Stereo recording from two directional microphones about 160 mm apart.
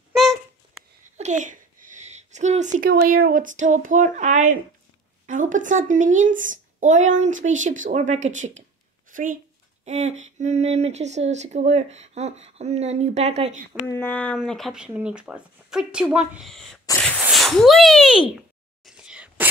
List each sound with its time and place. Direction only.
0.1 s babbling: centre (ahead or behind)
1.1 s a sound: 50° right (ahead or behind)
2.9 s speech: 75° right (ahead or behind); by 9.4 s 60° right (ahead or behind)
9.8 s speech: 45° right (ahead or behind)
13.8 s speech: 15° left (ahead or behind)
18.9 s a sound: 5° right (ahead or behind)